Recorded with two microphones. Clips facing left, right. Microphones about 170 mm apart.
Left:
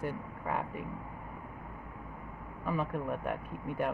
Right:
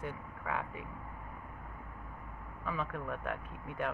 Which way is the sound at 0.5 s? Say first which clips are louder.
Left 3 dB; 45° left (ahead or behind).